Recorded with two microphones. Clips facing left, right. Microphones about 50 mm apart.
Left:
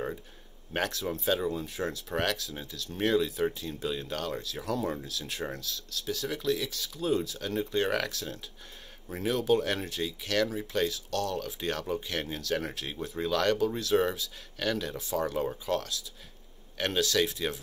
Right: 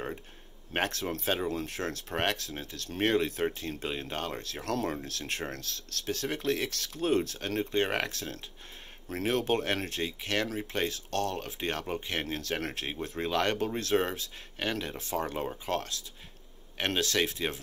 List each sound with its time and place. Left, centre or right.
1.2 s speech: right
1.5 s speech: right
2.1 s speech: right
4.4 s speech: right
4.6 s speech: right
5.0 s speech: right
13.3 s speech: right
14.7 s speech: right
15.0 s speech: right